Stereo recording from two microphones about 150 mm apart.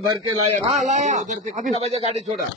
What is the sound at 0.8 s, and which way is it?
Speech, 55° right (ahead or behind).